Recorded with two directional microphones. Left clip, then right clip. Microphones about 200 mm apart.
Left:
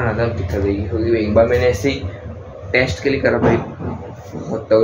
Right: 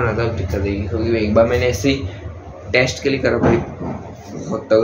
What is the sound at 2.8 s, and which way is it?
Speech, 10° right (ahead or behind).